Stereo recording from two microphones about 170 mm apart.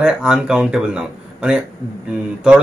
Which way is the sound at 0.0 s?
5° right (ahead or behind).